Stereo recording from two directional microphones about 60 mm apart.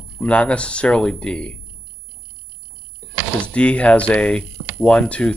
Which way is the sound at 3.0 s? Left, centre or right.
Left.